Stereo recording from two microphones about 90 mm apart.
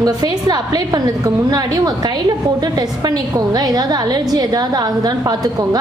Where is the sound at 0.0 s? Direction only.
45° right (ahead or behind).